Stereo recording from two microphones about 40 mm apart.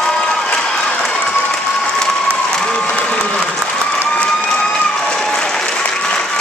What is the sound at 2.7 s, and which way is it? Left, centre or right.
Applause, left.